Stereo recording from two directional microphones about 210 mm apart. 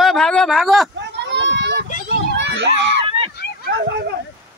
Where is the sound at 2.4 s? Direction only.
55° right (ahead or behind).